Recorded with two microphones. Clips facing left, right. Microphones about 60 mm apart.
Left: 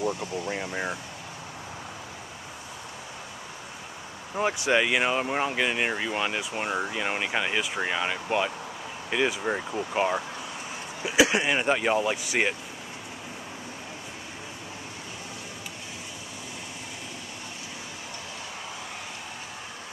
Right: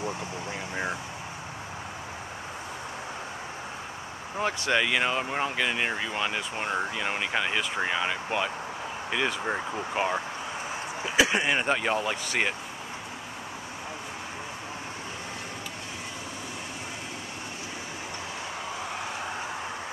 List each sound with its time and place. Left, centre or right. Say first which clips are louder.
0.1 s speech: left 3 dB; right
4.4 s speech: left 2 dB; centre